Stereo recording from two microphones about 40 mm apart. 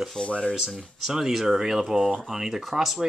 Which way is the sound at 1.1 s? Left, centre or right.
Centre.